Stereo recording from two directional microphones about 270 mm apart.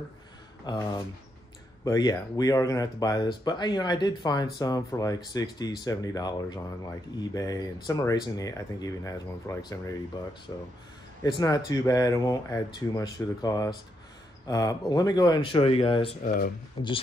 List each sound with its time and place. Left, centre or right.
0.7 s speech: centre
11.2 s speech: centre